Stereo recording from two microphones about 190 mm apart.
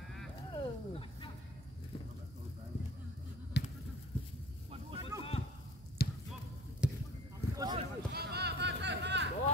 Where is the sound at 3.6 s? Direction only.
65° left (ahead or behind).